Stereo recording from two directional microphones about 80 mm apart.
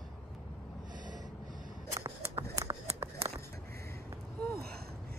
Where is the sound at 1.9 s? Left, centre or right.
Right.